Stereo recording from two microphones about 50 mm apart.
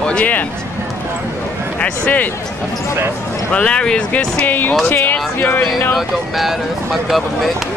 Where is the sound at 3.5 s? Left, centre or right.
Left.